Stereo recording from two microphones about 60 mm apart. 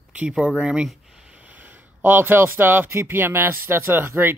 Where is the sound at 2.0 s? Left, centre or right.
Right.